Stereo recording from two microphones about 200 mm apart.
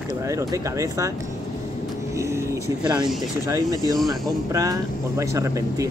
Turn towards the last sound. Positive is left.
turn(degrees=-15)  # may be behind; listen again after turning